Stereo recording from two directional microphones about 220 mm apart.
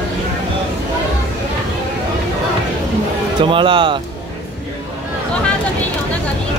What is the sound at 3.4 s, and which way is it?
Speech, 20° right (ahead or behind).